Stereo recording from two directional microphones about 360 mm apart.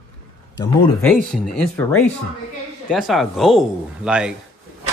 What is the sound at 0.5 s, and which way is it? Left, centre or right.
A man's voice, centre.